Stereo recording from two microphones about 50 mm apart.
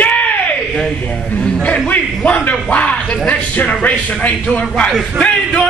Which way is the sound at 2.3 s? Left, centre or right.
Left.